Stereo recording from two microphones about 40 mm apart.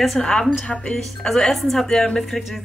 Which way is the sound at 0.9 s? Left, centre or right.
Centre.